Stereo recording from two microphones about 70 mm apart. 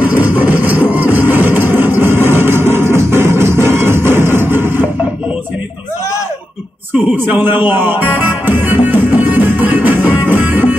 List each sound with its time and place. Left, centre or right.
0.0 s music: right
7.2 s music: right